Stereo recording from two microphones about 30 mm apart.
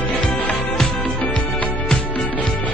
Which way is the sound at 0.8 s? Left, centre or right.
Left.